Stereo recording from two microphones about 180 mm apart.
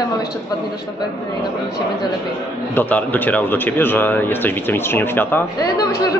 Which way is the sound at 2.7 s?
10° left (ahead or behind).